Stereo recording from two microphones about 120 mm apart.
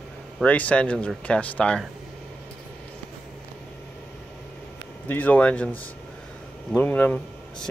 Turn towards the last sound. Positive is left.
turn(degrees=15)  # may be behind; listen again after turning